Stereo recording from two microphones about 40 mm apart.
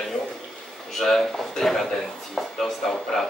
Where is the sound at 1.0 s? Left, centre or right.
Centre.